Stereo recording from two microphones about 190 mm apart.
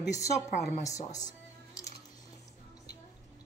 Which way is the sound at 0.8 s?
20° left (ahead or behind).